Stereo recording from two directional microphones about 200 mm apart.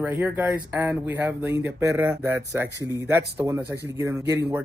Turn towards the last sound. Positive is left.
turn(degrees=-15)  # may be behind; listen again after turning